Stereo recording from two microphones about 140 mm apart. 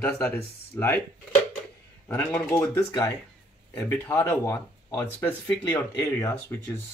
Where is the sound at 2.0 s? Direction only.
15° left (ahead or behind).